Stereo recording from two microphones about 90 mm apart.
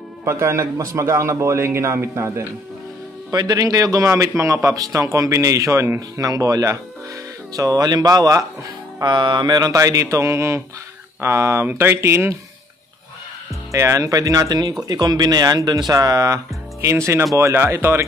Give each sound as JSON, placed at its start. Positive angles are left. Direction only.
{"t": 0.2, "sound": "speech", "side_deg": -30}
{"t": 3.3, "sound": "speech", "side_deg": -45}
{"t": 9.0, "sound": "speech", "side_deg": -60}
{"t": 13.7, "sound": "speech", "side_deg": -35}